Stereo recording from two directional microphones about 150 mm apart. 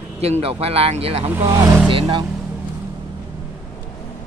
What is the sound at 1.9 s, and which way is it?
Speech, 35° right (ahead or behind).